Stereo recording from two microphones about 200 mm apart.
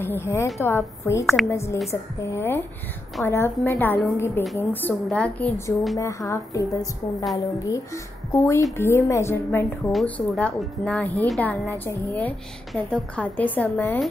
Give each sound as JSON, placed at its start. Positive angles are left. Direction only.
{"t": 0.0, "sound": "a woman's voice", "side_deg": 10}
{"t": 1.2, "sound": "speech", "side_deg": 0}
{"t": 1.5, "sound": "a woman's voice", "side_deg": 15}